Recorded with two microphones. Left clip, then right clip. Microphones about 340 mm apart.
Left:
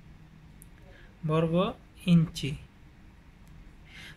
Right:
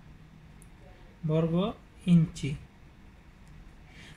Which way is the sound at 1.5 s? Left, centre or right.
Left.